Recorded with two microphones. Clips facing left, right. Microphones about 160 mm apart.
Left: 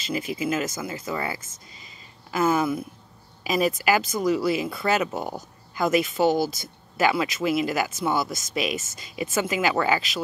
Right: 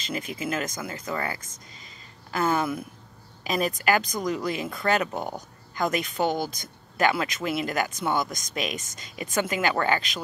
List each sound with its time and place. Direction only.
0.3 s speech: 5° left (ahead or behind)
8.9 s speech: 40° right (ahead or behind)
9.3 s speech: 5° left (ahead or behind)